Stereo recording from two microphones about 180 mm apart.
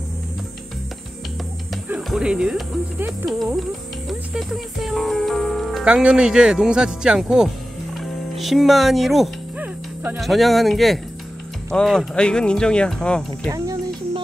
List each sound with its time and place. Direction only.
1.9 s speech: 5° right (ahead or behind)
13.5 s music: 20° right (ahead or behind)